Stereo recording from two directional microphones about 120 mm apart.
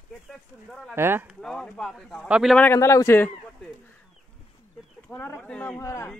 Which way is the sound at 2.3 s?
5° right (ahead or behind).